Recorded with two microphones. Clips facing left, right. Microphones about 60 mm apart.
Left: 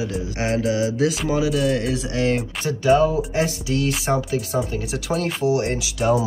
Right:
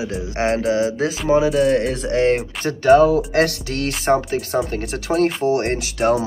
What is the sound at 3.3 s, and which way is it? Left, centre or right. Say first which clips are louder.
Speech: right 3 dB; right.